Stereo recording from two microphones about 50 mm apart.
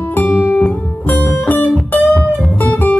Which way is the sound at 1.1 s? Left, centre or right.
Left.